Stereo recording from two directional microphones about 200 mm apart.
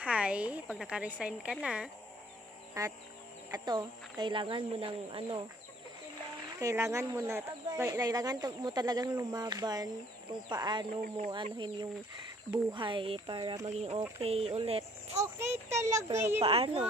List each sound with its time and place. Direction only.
0.0 s speech: 5° right (ahead or behind)
2.8 s a child's voice: 15° right (ahead or behind)
6.6 s speech: 15° right (ahead or behind)
15.1 s a child's voice: 15° right (ahead or behind)
16.3 s speech: 30° right (ahead or behind)